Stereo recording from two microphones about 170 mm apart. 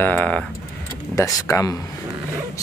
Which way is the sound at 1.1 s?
20° left (ahead or behind).